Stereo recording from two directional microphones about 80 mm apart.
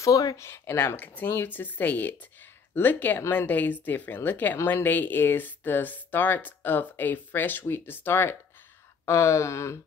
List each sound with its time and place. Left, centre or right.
0.0 s speech: left
0.5 s speech: left